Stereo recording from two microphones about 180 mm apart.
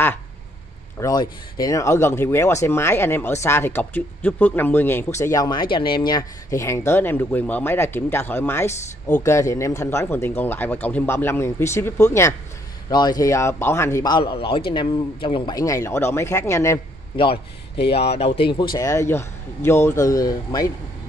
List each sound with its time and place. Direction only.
0.9 s speech: 20° left (ahead or behind)
17.9 s speech: 35° left (ahead or behind)